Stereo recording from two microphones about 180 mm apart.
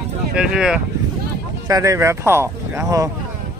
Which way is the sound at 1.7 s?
20° right (ahead or behind).